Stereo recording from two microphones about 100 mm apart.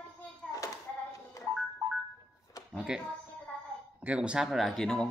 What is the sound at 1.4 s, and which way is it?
Music, 35° left (ahead or behind).